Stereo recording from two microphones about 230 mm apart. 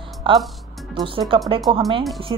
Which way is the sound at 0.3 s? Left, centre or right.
Right.